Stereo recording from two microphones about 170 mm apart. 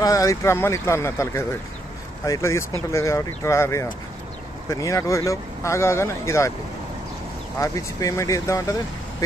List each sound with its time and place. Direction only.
0.0 s speech: 20° left (ahead or behind)
7.5 s speech: 20° left (ahead or behind)